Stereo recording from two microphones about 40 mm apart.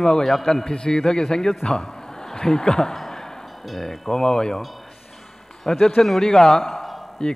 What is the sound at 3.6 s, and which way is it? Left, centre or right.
Speech, centre.